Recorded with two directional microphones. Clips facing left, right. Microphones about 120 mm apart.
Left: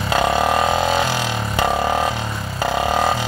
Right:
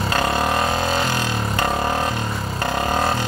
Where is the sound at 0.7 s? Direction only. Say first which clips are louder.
Left 3 dB; 10° left (ahead or behind).